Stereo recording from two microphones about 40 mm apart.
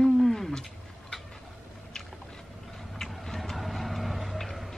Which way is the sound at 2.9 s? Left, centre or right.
Centre.